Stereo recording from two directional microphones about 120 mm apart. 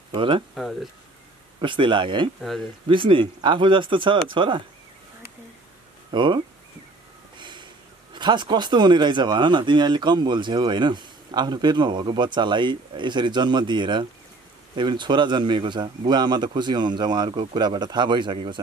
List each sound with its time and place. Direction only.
0.1 s speech: 45° right (ahead or behind)
0.6 s speech: centre (ahead or behind)
1.6 s speech: 45° right (ahead or behind)
6.1 s speech: 40° right (ahead or behind)